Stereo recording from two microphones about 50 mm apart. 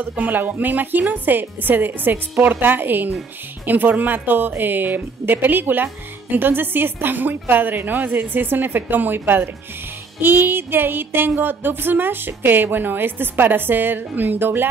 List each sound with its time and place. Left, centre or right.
0.0 s speech: right
10.2 s music: right